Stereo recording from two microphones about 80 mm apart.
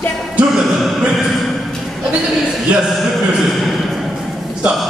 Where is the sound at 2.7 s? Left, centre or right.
Centre.